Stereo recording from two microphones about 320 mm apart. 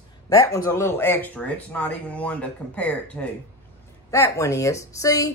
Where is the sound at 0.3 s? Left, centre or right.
Centre.